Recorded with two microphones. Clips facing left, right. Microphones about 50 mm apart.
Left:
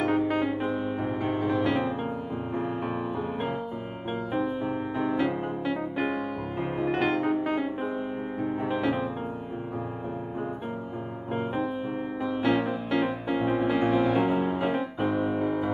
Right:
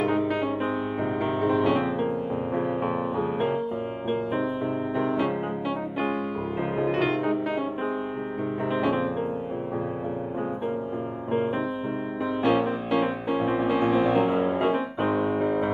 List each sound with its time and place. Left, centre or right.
0.0 s music: centre
4.9 s music: centre
8.6 s music: centre
12.4 s music: centre